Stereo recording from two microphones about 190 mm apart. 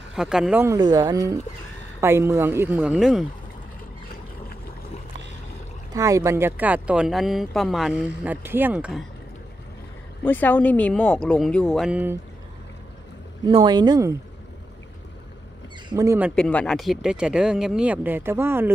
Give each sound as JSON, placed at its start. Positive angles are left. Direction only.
{"t": 0.1, "sound": "speech", "side_deg": -5}
{"t": 5.9, "sound": "speech", "side_deg": -15}
{"t": 10.2, "sound": "speech", "side_deg": 10}
{"t": 13.5, "sound": "speech", "side_deg": -25}
{"t": 15.9, "sound": "speech", "side_deg": -15}
{"t": 16.3, "sound": "speech", "side_deg": 5}